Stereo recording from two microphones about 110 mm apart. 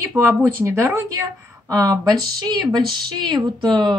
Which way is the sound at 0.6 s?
25° right (ahead or behind).